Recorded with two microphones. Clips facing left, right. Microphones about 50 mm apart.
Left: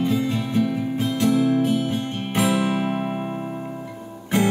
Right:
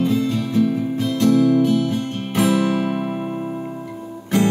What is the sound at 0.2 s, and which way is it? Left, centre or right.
Music, left.